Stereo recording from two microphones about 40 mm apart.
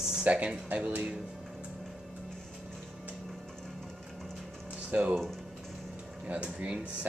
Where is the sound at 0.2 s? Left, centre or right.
Right.